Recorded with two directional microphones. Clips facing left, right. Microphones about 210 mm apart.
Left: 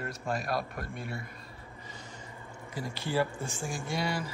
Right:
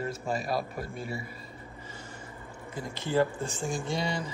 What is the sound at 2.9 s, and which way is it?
Speech, 20° right (ahead or behind).